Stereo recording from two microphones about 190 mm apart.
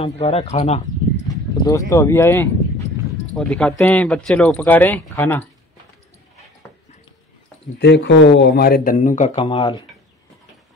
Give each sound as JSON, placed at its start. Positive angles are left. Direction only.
{"t": 0.0, "sound": "speech", "side_deg": 35}
{"t": 1.7, "sound": "speech", "side_deg": 15}
{"t": 3.3, "sound": "speech", "side_deg": 0}
{"t": 7.8, "sound": "speech", "side_deg": 65}